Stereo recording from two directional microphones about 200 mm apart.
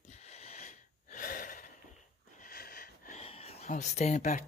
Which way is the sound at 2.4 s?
50° left (ahead or behind).